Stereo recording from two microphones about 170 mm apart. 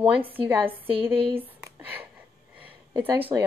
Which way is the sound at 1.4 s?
10° right (ahead or behind).